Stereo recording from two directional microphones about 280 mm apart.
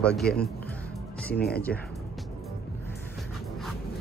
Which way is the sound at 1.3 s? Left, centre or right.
Left.